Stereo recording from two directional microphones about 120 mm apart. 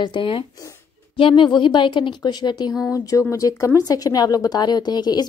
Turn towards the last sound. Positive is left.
turn(degrees=35)  # may be behind; listen again after turning